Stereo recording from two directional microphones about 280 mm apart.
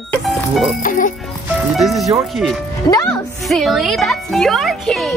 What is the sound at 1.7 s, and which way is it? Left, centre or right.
Speech, centre.